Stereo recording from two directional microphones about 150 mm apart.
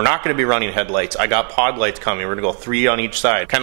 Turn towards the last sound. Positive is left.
turn(degrees=-10)  # may be behind; listen again after turning